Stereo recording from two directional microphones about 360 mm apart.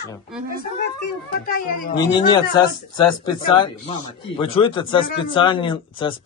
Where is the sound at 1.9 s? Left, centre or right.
Centre.